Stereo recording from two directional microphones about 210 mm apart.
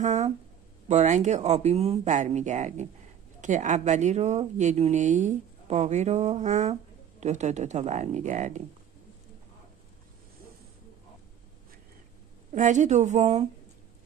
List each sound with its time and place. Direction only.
0.0 s a sound: 35° right (ahead or behind)
0.8 s speech: 35° right (ahead or behind)
12.5 s speech: 35° right (ahead or behind)